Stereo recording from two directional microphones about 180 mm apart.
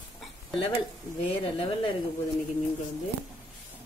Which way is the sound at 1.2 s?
30° left (ahead or behind).